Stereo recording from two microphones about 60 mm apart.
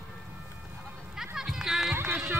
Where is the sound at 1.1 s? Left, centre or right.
Centre.